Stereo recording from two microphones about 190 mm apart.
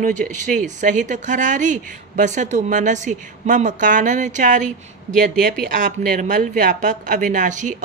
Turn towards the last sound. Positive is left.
turn(degrees=-40)  # may be behind; listen again after turning